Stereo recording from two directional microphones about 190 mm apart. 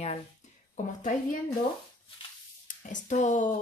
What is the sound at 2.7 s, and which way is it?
Speech, 40° left (ahead or behind).